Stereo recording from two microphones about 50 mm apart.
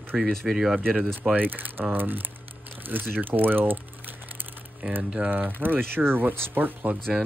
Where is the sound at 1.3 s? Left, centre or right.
Right.